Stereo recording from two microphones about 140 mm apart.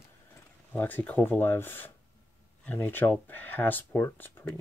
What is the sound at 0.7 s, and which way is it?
Speech, 15° left (ahead or behind).